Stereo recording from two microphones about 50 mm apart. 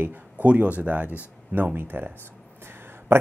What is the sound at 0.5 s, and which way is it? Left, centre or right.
Speech, right.